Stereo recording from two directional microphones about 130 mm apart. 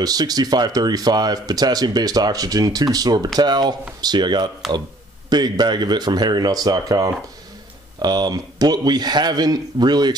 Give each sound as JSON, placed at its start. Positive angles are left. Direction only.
{"t": 0.0, "sound": "speech", "side_deg": -30}